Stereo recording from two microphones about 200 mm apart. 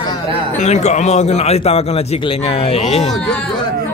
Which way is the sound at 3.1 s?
5° left (ahead or behind).